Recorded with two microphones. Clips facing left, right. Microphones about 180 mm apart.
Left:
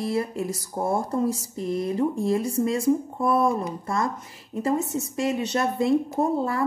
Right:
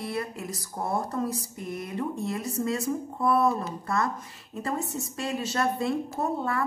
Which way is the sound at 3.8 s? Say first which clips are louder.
Left 2 dB; 25° left (ahead or behind).